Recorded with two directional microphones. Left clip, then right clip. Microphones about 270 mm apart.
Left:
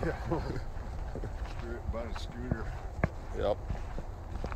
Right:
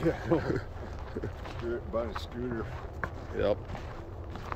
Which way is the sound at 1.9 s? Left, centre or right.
Right.